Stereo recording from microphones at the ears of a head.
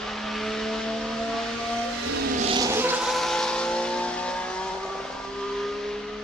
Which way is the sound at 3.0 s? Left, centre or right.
Centre.